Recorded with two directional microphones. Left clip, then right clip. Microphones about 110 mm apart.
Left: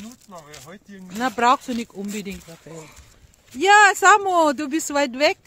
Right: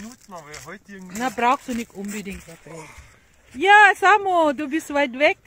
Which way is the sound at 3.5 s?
25° left (ahead or behind).